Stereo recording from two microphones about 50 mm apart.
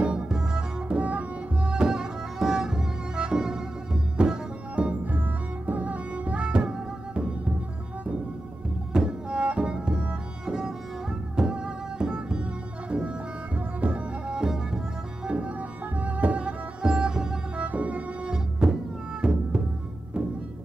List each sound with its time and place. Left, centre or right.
0.0 s music: centre
0.9 s tabla: right
1.6 s music: centre
4.7 s music: right
8.9 s music: centre
15.2 s music: right
16.8 s music: centre
17.6 s music: right
18.3 s music: centre